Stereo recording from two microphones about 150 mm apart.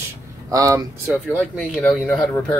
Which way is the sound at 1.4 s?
10° left (ahead or behind).